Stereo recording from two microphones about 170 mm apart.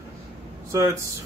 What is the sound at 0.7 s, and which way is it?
Speech, 15° right (ahead or behind).